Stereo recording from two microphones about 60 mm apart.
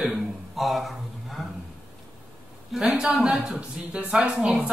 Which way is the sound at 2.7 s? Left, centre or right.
Centre.